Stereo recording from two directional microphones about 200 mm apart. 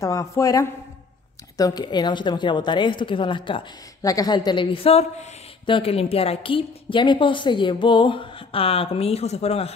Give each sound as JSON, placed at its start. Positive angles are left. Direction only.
{"t": 0.0, "sound": "a woman's voice", "side_deg": 15}